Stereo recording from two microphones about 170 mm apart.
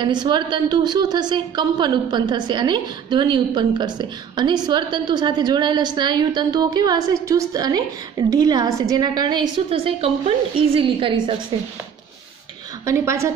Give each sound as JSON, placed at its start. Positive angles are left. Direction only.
{"t": 0.0, "sound": "a woman's voice", "side_deg": -25}
{"t": 12.8, "sound": "a woman's voice", "side_deg": -15}